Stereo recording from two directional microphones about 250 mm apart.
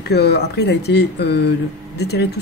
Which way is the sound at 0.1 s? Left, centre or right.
Left.